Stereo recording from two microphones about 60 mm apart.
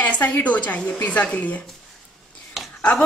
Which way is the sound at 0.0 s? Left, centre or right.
Left.